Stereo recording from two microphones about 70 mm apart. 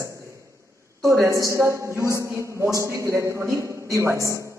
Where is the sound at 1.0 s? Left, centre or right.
Right.